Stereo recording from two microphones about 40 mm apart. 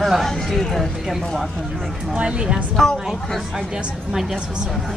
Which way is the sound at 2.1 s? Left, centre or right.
Right.